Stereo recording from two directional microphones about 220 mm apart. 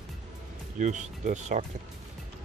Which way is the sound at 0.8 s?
35° right (ahead or behind).